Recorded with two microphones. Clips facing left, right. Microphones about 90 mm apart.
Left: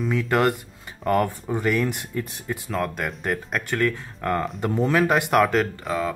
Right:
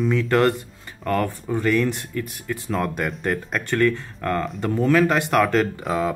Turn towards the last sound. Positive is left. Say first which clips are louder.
# right 2 dB
turn(degrees=0)  # may be behind; listen again after turning